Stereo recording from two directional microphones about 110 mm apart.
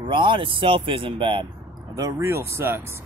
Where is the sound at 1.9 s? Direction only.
30° right (ahead or behind).